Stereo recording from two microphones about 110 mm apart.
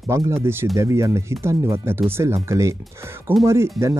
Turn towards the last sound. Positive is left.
turn(degrees=-25)  # may be behind; listen again after turning